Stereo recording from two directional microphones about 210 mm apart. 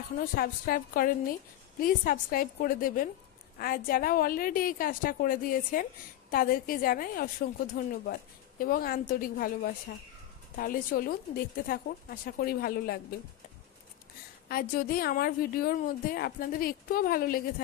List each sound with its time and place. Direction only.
0.2 s a woman's voice: 40° left (ahead or behind)
14.5 s a woman's voice: 45° left (ahead or behind)